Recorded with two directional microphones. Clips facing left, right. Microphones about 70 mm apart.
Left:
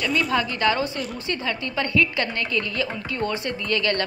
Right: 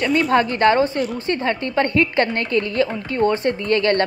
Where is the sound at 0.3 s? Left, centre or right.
Right.